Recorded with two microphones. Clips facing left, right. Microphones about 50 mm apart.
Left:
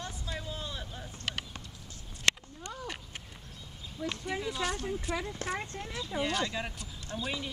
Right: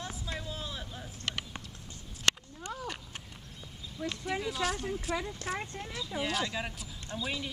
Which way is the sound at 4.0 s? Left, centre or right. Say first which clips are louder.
Even; centre.